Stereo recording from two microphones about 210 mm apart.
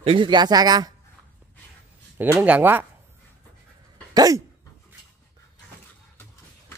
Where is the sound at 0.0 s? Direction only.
25° right (ahead or behind).